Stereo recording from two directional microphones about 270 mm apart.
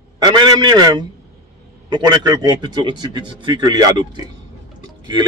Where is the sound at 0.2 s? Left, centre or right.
Centre.